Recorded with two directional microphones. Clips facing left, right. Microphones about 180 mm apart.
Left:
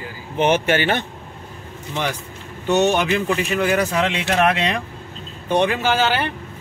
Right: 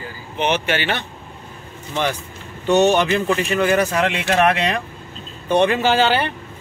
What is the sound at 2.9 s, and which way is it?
Speech, 10° left (ahead or behind).